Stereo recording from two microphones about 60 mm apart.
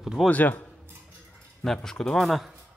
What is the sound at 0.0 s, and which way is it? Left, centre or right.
Speech, centre.